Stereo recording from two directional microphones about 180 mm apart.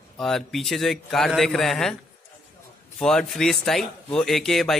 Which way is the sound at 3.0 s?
5° left (ahead or behind).